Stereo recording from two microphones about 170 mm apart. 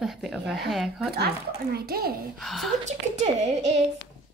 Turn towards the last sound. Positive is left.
turn(degrees=-40)  # may be behind; listen again after turning